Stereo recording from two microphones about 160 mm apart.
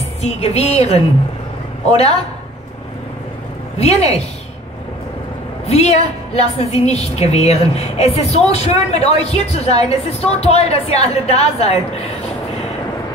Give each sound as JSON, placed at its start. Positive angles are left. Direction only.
{"t": 0.2, "sound": "a woman's voice", "side_deg": 40}
{"t": 3.7, "sound": "a woman's voice", "side_deg": 40}
{"t": 5.7, "sound": "a woman's voice", "side_deg": 40}